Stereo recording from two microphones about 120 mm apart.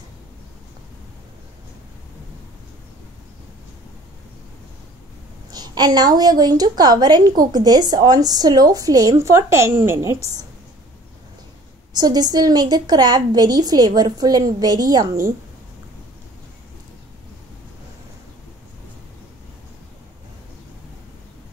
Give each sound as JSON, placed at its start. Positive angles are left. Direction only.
{"t": 5.5, "sound": "a woman's voice", "side_deg": -35}
{"t": 11.9, "sound": "a woman's voice", "side_deg": -35}